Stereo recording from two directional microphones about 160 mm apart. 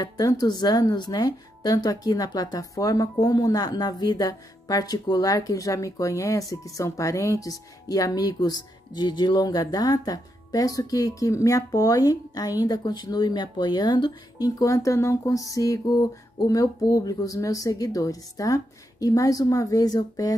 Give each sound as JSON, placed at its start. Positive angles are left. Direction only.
{"t": 0.0, "sound": "speech", "side_deg": 25}